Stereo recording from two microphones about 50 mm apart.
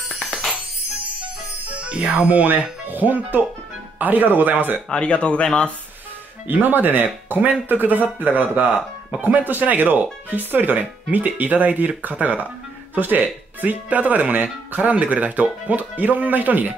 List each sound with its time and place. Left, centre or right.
1.7 s speech: right
4.8 s speech: left
6.4 s speech: right
8.6 s speech: centre
9.2 s speech: right